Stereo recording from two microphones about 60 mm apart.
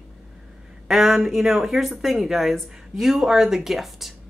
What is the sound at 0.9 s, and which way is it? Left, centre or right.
Speech, centre.